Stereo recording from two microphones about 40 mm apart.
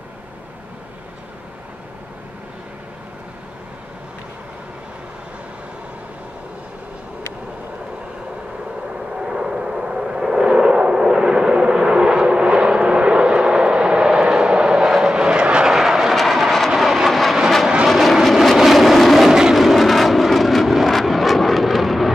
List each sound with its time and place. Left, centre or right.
8.9 s vehicle: centre
11.1 s a sound: centre
14.2 s vehicle: centre
15.6 s vehicle: centre
16.2 s vehicle: centre